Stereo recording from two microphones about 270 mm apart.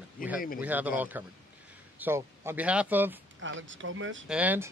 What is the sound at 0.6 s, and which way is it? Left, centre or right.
Speech, centre.